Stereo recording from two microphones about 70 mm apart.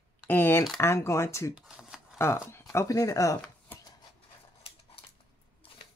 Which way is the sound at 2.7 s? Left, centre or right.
Left.